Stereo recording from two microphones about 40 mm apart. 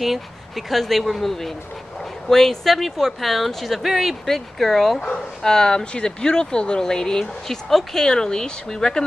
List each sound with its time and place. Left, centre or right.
0.0 s speech: centre